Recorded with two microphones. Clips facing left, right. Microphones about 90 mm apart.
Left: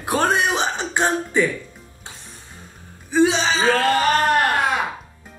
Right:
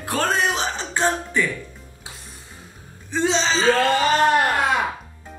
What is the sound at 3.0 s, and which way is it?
Speech, 10° left (ahead or behind).